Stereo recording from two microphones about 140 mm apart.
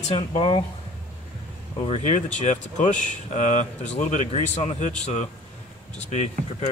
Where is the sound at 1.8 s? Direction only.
55° left (ahead or behind).